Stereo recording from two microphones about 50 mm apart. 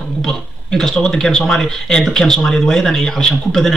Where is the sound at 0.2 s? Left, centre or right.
Centre.